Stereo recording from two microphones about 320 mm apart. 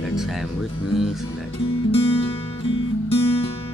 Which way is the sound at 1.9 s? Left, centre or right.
Centre.